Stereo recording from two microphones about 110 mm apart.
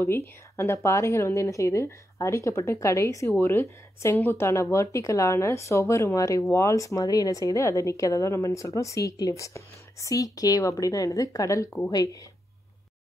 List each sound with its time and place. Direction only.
0.0 s speech: 25° left (ahead or behind)